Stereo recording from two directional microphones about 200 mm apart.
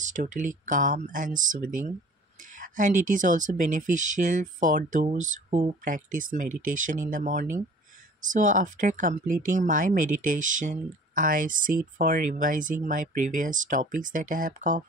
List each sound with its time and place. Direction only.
0.0 s speech: 40° right (ahead or behind)